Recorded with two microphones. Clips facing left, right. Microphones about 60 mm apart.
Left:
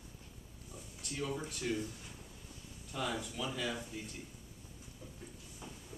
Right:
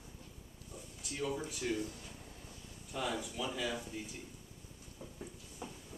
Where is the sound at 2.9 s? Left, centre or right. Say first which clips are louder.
Even; centre.